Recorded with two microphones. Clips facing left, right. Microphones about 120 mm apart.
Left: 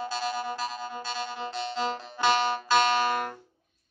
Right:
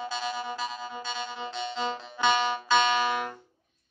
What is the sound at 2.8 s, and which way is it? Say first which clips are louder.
Music: left 1 dB; 45° left (ahead or behind).